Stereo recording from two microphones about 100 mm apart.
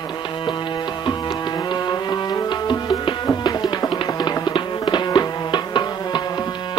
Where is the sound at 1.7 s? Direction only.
45° left (ahead or behind).